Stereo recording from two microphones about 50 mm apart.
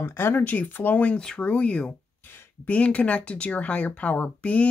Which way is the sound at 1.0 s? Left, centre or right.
Left.